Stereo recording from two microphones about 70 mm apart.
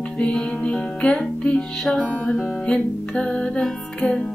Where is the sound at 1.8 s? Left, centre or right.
Centre.